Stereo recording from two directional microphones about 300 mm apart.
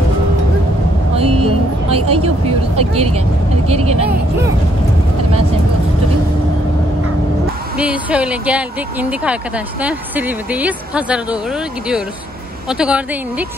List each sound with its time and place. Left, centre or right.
1.1 s vehicle: centre
2.0 s speech: centre
7.7 s a woman's voice: centre